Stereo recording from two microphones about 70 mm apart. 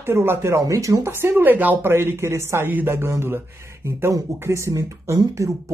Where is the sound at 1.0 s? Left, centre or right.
Right.